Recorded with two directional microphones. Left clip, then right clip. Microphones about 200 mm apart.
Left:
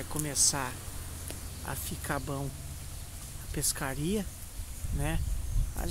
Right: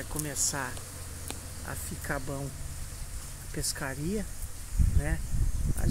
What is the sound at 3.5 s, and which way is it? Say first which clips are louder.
Speech: even; 5° left (ahead or behind).